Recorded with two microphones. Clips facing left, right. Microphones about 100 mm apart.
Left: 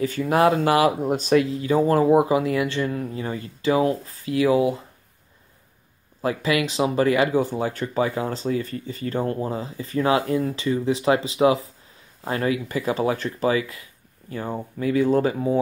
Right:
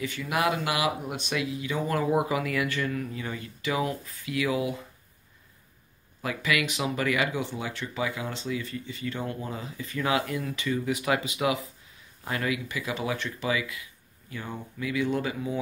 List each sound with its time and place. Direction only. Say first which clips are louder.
0.0 s speech: left 9 dB; 40° left (ahead or behind)
6.2 s speech: left 6 dB; 30° left (ahead or behind)